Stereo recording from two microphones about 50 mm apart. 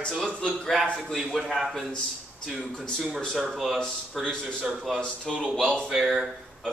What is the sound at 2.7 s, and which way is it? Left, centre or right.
Speech, centre.